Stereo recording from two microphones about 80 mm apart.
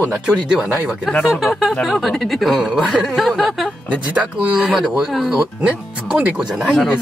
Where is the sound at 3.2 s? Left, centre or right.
Centre.